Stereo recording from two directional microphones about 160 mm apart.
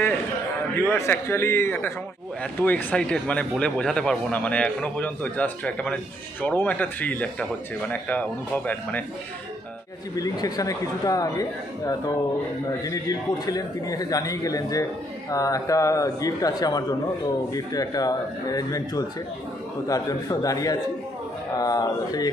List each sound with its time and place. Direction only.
0.7 s speech: 15° left (ahead or behind)
10.1 s a man's voice: 20° left (ahead or behind)
13.5 s a man's voice: 20° left (ahead or behind)